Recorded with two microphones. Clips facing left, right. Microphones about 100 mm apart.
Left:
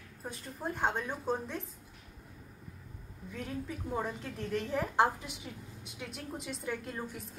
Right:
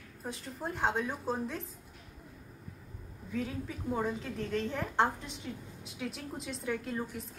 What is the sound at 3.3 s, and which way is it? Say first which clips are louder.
A woman's voice: right 3 dB; centre (ahead or behind).